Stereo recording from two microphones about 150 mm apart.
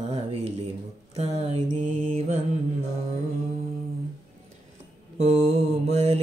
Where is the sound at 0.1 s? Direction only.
45° right (ahead or behind).